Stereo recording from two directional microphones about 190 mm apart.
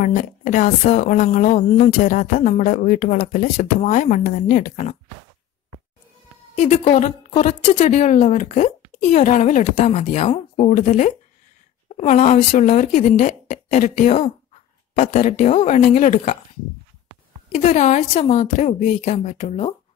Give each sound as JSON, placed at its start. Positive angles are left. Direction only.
{"t": 0.0, "sound": "a woman's voice", "side_deg": 40}
{"t": 6.5, "sound": "a woman's voice", "side_deg": 40}
{"t": 17.5, "sound": "a woman's voice", "side_deg": 40}